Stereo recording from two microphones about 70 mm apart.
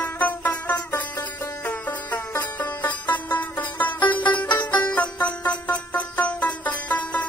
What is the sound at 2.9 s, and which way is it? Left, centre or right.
Music, left.